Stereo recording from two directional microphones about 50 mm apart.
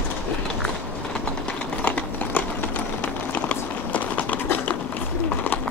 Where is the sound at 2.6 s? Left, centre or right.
Left.